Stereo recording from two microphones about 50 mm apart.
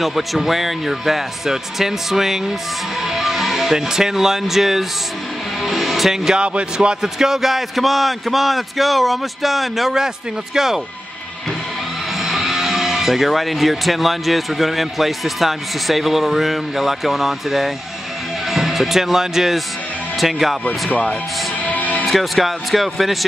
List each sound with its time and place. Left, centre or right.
0.0 s speech: centre
12.2 s speech: centre
21.6 s music: left
22.0 s speech: centre